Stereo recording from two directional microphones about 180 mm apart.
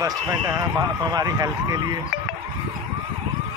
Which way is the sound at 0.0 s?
20° right (ahead or behind).